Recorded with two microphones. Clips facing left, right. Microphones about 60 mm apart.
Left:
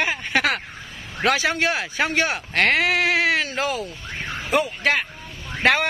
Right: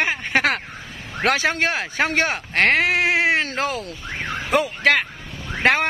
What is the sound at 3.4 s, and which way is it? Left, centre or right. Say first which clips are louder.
Speech: right 1 dB; right.